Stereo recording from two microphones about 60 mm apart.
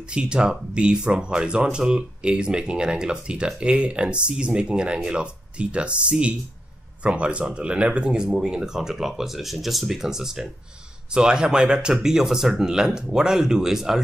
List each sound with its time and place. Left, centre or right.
0.0 s speech: centre
8.3 s speech: centre